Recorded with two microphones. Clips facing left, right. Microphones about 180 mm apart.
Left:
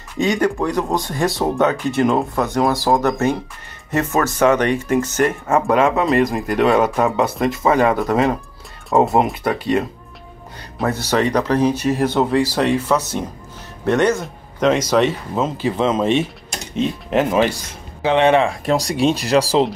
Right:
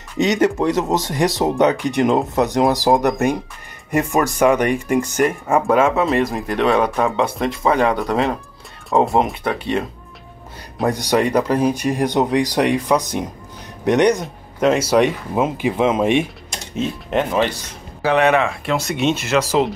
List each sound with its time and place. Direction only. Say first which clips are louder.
0.2 s speech: right 2 dB; 20° right (ahead or behind); by 9.8 s 5° left (ahead or behind)
10.9 s speech: right 1 dB; 15° right (ahead or behind)
16.7 s speech: left 2 dB; centre (ahead or behind)
18.0 s speech: left 1 dB; 25° left (ahead or behind)